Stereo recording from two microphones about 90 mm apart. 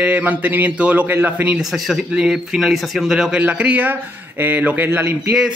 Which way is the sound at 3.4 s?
15° right (ahead or behind).